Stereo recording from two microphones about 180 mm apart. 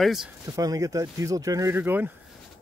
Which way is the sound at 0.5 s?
20° right (ahead or behind).